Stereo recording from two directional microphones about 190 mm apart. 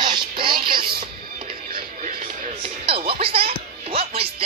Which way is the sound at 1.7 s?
45° right (ahead or behind).